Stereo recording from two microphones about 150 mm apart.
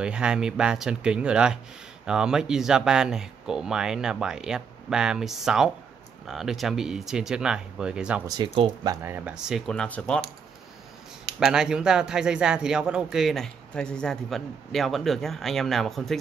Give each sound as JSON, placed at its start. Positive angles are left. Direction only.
{"t": 0.0, "sound": "speech", "side_deg": -5}
{"t": 8.5, "sound": "speech", "side_deg": -35}
{"t": 9.0, "sound": "speech", "side_deg": -10}
{"t": 11.3, "sound": "speech", "side_deg": -5}